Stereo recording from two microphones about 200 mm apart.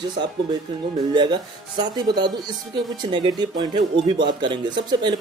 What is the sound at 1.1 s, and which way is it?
Speech, 20° right (ahead or behind).